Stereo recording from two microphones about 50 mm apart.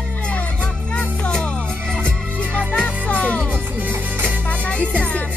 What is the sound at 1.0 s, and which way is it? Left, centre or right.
Music, left.